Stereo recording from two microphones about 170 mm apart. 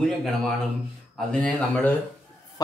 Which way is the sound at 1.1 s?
5° left (ahead or behind).